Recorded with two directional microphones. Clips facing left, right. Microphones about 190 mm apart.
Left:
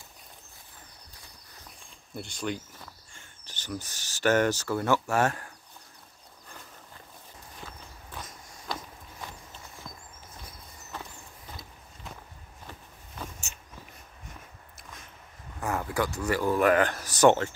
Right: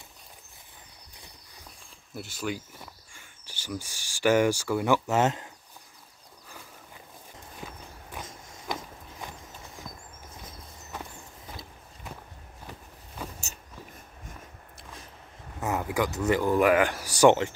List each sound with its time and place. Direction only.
2.1 s speech: 5° right (ahead or behind)
7.6 s clip-clop: 15° right (ahead or behind)
8.6 s walk: 15° right (ahead or behind)
13.5 s walk: 40° right (ahead or behind)
15.6 s speech: 15° right (ahead or behind)